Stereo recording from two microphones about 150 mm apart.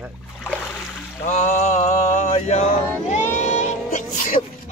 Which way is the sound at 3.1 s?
50° left (ahead or behind).